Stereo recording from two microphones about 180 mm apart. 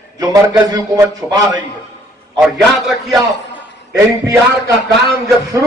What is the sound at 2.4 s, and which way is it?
Speech, centre (ahead or behind).